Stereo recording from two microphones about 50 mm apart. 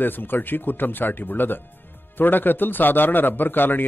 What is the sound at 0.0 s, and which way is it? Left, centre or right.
A man's voice, left.